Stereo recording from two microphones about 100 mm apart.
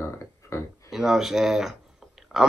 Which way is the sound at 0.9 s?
5° right (ahead or behind).